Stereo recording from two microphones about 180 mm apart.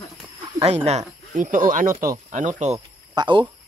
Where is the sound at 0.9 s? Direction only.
40° right (ahead or behind).